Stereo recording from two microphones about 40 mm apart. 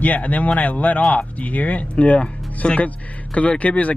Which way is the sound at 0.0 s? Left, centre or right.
Left.